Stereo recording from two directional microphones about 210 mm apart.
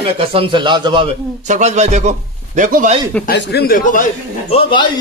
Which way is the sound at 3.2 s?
55° left (ahead or behind).